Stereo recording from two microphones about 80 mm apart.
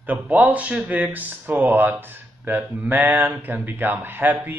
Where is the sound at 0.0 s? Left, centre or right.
Right.